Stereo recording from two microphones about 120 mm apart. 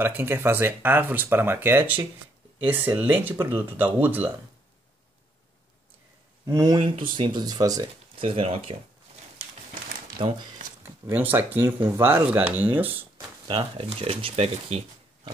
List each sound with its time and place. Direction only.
0.0 s speech: 20° right (ahead or behind)
6.4 s speech: 30° right (ahead or behind)
6.8 s speech: 45° right (ahead or behind)
8.2 s speech: 50° right (ahead or behind)
10.2 s speech: 45° right (ahead or behind)
11.1 s speech: 15° right (ahead or behind)
13.5 s speech: 50° right (ahead or behind)